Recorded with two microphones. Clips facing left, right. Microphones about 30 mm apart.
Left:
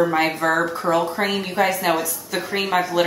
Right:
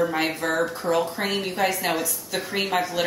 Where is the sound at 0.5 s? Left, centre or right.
Left.